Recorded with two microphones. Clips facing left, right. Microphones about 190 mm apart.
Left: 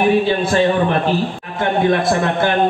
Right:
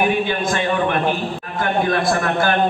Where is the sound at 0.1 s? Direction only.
30° left (ahead or behind).